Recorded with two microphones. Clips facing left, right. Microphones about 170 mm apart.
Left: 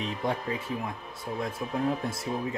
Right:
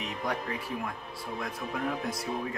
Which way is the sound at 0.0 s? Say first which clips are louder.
Left 3 dB; 25° left (ahead or behind).